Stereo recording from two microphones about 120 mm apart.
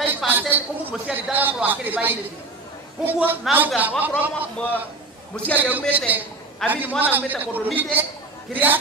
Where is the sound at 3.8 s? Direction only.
15° right (ahead or behind).